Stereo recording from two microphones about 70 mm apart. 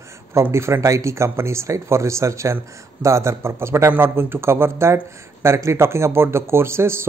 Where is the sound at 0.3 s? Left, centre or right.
Right.